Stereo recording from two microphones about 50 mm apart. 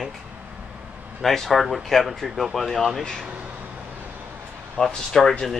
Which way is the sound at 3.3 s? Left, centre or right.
Right.